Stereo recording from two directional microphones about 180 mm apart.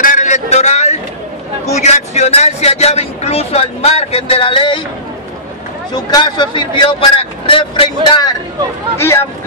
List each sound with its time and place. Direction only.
0.0 s a sound: 45° left (ahead or behind)
1.7 s speech: 40° left (ahead or behind)
5.9 s speech: 25° left (ahead or behind)